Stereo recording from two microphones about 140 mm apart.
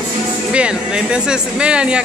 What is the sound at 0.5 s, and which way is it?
Speech, 5° right (ahead or behind).